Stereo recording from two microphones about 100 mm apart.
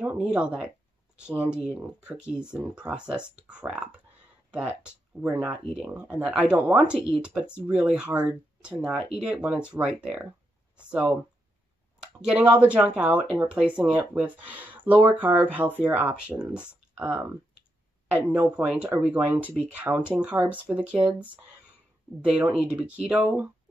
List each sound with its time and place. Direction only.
0.0 s speech: 15° right (ahead or behind)
18.3 s speech: 10° right (ahead or behind)